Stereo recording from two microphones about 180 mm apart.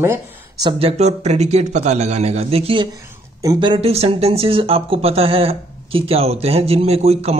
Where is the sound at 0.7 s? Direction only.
35° right (ahead or behind).